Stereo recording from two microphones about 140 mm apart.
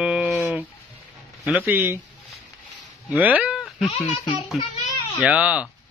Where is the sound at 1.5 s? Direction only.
15° right (ahead or behind).